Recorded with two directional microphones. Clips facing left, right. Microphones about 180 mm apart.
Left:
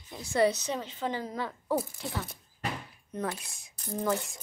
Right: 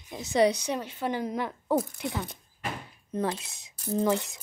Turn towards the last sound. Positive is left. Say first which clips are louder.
# right 4 dB
turn(degrees=-20)  # may be behind; listen again after turning